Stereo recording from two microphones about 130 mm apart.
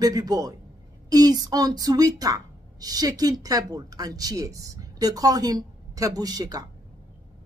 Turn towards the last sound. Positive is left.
turn(degrees=-30)  # may be behind; listen again after turning